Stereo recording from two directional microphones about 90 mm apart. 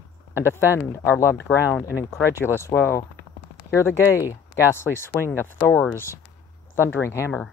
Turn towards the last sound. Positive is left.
turn(degrees=30)  # may be behind; listen again after turning